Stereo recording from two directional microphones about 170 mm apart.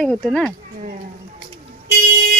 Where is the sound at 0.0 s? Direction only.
Centre (ahead or behind).